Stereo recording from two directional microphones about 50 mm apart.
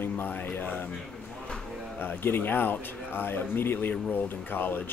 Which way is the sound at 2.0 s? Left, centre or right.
Left.